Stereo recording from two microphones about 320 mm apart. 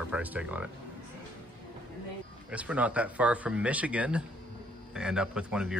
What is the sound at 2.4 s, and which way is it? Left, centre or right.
Speech, centre.